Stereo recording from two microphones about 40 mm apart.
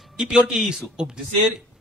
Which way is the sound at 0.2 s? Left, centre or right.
Centre.